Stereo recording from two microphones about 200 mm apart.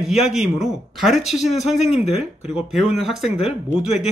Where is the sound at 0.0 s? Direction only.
Centre (ahead or behind).